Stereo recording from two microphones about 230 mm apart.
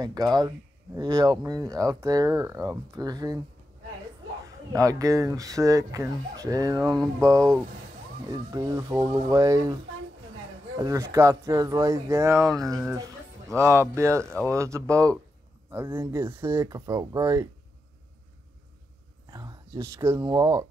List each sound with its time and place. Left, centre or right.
0.0 s speech: centre
4.7 s speech: centre
10.8 s speech: centre
12.4 s speech: centre
13.6 s speech: centre
19.3 s speech: centre